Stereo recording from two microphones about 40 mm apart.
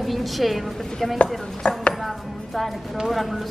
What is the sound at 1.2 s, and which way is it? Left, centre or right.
Speech, left.